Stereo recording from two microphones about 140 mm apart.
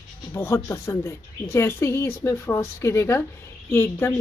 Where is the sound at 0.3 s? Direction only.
20° left (ahead or behind).